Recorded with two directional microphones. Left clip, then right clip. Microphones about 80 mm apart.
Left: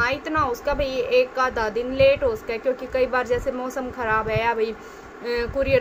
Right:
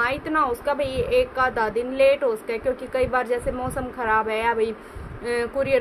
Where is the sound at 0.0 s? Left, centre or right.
Right.